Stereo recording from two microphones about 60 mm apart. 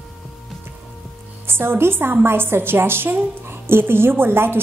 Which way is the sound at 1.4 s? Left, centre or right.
Right.